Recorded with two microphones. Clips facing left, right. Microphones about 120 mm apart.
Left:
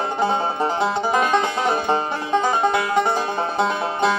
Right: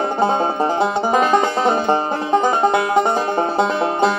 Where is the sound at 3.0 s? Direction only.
20° right (ahead or behind).